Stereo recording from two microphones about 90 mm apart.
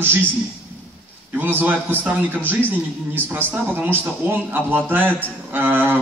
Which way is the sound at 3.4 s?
20° right (ahead or behind).